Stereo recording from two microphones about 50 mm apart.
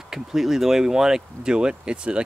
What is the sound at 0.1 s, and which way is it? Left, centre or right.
Speech, centre.